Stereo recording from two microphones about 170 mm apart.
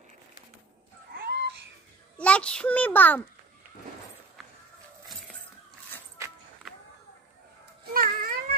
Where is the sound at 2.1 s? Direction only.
5° left (ahead or behind).